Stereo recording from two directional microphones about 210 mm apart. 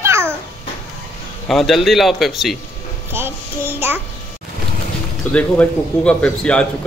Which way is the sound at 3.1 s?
10° right (ahead or behind).